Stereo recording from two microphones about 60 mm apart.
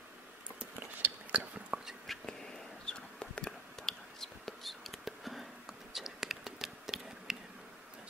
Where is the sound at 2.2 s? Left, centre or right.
Centre.